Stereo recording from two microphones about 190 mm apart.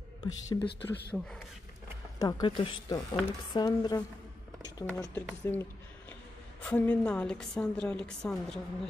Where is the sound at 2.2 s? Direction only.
20° left (ahead or behind).